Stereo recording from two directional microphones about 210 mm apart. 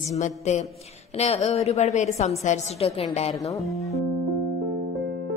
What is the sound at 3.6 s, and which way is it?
Speech, centre (ahead or behind).